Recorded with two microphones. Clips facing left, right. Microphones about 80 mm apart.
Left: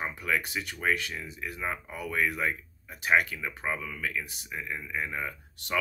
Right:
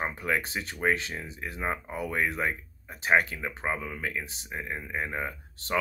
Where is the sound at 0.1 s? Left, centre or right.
Right.